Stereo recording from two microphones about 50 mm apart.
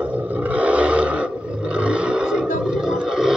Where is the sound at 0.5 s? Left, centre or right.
Right.